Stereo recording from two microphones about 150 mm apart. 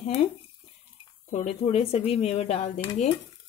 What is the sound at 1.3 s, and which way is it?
Speech, 50° left (ahead or behind).